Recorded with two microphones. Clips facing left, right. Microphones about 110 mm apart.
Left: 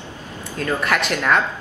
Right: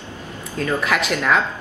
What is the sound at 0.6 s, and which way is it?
Speech, centre (ahead or behind).